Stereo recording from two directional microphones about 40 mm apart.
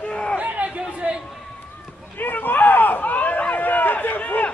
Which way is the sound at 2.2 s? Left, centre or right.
Left.